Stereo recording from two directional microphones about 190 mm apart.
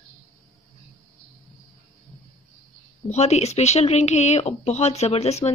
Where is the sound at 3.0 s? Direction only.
35° left (ahead or behind).